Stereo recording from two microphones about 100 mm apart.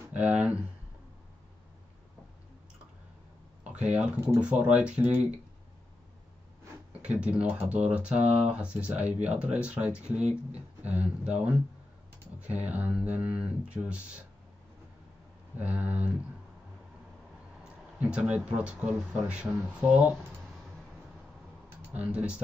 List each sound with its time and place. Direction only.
0.0 s speech: 15° right (ahead or behind)
3.6 s a sound: 10° right (ahead or behind)
4.4 s speech: 10° right (ahead or behind)
7.0 s speech: 10° right (ahead or behind)
15.5 s speech: 15° right (ahead or behind)
17.6 s speech: 15° right (ahead or behind)
21.6 s a sound: 15° right (ahead or behind)